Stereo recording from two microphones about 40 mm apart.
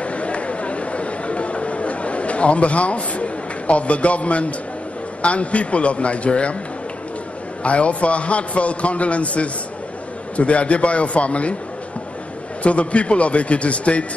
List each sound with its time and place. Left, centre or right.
0.0 s a sound: left
5.2 s a man's voice: left
7.6 s a man's voice: left
12.6 s a man's voice: left